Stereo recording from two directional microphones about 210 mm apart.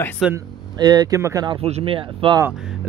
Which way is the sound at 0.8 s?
20° right (ahead or behind).